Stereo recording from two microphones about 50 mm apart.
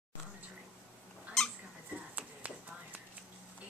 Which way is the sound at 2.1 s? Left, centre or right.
Right.